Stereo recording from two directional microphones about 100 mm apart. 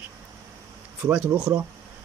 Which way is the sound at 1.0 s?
10° right (ahead or behind).